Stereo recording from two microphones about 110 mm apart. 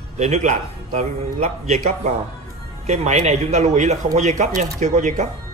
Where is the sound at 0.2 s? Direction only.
90° right.